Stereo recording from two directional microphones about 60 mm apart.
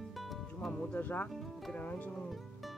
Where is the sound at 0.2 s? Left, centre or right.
Centre.